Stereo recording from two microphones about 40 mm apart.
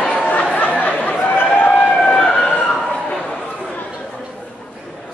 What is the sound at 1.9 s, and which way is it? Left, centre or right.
Vehicle, left.